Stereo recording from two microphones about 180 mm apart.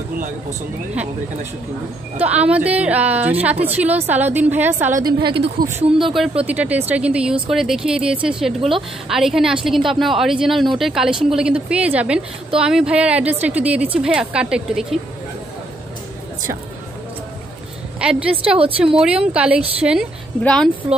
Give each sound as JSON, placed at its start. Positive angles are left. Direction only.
{"t": 2.1, "sound": "a woman's voice", "side_deg": -5}
{"t": 5.0, "sound": "a woman's voice", "side_deg": -25}
{"t": 5.7, "sound": "a woman's voice", "side_deg": -10}
{"t": 18.0, "sound": "a woman's voice", "side_deg": -5}